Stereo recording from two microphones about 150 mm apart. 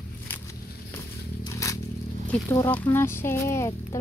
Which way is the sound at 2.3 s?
15° left (ahead or behind).